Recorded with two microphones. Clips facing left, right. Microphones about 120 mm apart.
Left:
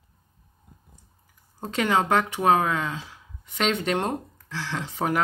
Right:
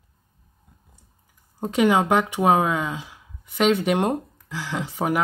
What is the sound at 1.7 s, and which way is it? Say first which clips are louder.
Speech: right 4 dB; 15° right (ahead or behind).